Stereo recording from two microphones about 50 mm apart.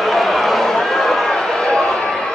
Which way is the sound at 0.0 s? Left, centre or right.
Centre.